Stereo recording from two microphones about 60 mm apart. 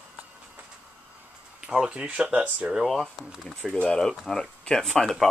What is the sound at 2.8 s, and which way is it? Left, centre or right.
Speech, centre.